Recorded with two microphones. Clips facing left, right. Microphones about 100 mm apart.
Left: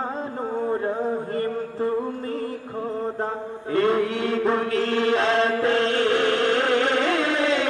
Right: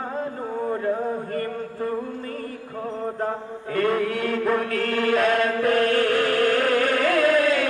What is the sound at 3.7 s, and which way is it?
Mantra, 25° left (ahead or behind).